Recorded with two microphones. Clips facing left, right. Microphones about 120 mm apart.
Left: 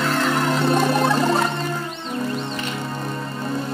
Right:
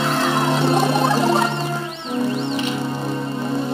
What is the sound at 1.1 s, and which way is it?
Music, 30° right (ahead or behind).